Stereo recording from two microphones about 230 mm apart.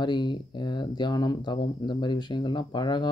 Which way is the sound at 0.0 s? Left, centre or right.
Centre.